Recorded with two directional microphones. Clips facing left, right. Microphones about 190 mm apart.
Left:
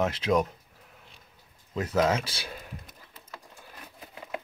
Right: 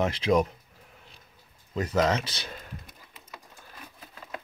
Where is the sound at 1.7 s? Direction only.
5° left (ahead or behind).